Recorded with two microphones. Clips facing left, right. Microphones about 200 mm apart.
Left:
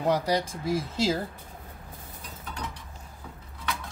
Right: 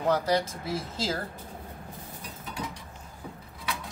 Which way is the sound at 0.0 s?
15° left (ahead or behind).